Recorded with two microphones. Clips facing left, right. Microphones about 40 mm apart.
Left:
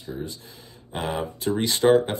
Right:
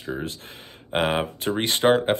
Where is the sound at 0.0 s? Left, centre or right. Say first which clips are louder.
Right 3 dB; right.